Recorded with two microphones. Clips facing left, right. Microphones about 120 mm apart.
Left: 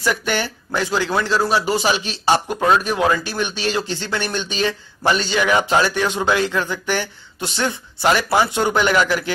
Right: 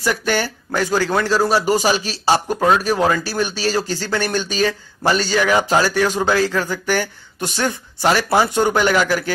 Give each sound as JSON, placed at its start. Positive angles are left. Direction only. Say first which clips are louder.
{"t": 0.0, "sound": "speech", "louder": "right 2 dB", "side_deg": -40}
{"t": 2.2, "sound": "speech", "louder": "even", "side_deg": -5}
{"t": 2.8, "sound": "speech", "louder": "right 1 dB", "side_deg": -40}